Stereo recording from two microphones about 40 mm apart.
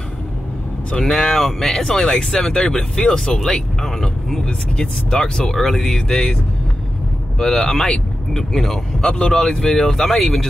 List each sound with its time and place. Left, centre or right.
1.0 s speech: centre
5.5 s speech: centre
7.3 s speech: centre